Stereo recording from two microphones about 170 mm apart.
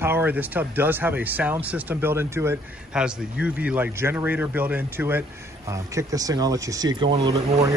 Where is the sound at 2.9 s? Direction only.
5° right (ahead or behind).